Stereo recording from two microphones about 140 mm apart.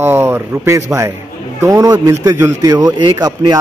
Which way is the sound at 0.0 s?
15° right (ahead or behind).